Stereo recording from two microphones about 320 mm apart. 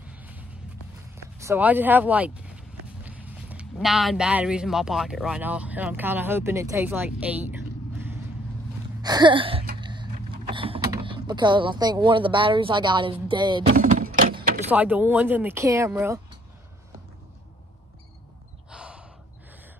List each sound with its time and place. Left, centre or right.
0.1 s music: centre
1.1 s speech: centre
9.0 s a sound: centre
14.7 s speech: centre
18.7 s gasp: centre